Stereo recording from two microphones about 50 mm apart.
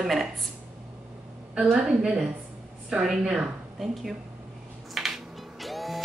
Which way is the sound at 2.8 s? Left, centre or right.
Centre.